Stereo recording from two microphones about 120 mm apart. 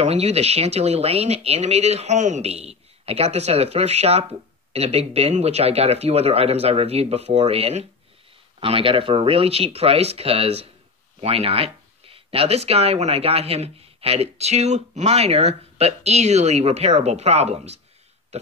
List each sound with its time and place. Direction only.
0.0 s speech: 60° right (ahead or behind)
18.3 s burping: 65° right (ahead or behind)